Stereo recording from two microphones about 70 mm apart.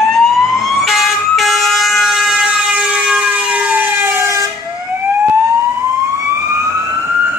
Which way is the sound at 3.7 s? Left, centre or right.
Right.